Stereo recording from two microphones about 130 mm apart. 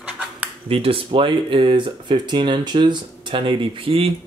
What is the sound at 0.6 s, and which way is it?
Speech, 45° right (ahead or behind).